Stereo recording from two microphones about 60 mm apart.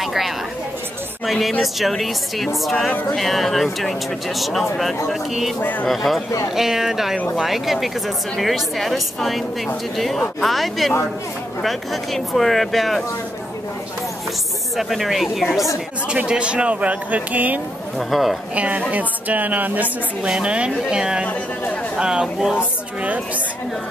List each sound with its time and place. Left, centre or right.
0.0 s speech: centre
2.9 s speech: left
3.2 s speech: centre
5.6 s speech: left
5.9 s a woman's voice: centre
14.8 s speech: centre
16.1 s speech: centre
17.9 s speech: centre
18.5 s speech: right
20.2 s a woman's voice: centre
23.0 s speech: right